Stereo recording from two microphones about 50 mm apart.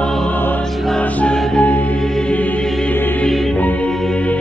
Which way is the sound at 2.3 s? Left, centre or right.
Left.